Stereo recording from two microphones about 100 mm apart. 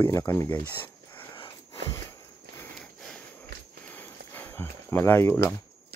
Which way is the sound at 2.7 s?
5° left (ahead or behind).